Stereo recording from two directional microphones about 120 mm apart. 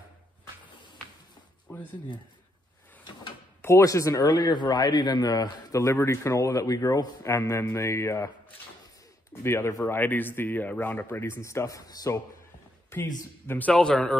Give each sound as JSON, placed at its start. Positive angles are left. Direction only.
{"t": 1.7, "sound": "a sound", "side_deg": 15}
{"t": 3.6, "sound": "a man's voice", "side_deg": 25}
{"t": 9.3, "sound": "a man's voice", "side_deg": 20}
{"t": 13.2, "sound": "a man's voice", "side_deg": 15}